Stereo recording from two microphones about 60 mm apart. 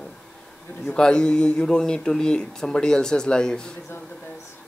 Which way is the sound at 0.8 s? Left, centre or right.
Centre.